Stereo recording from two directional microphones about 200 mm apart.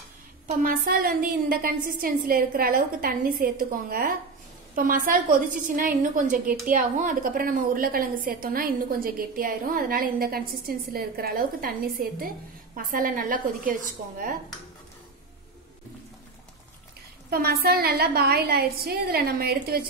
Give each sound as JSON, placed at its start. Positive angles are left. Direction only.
{"t": 0.6, "sound": "a woman's voice", "side_deg": -45}
{"t": 17.3, "sound": "a woman's voice", "side_deg": -50}